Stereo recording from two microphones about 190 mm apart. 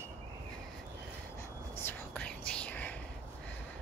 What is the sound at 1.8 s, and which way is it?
Whispering, 5° left (ahead or behind).